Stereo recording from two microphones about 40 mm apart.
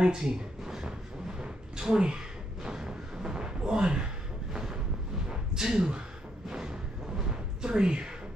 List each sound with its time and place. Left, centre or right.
0.0 s speech: centre
1.4 s a sound: centre
6.5 s music: centre